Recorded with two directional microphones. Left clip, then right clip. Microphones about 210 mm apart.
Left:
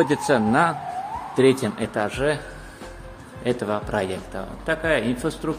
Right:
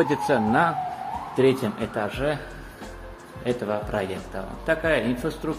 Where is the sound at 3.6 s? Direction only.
25° left (ahead or behind).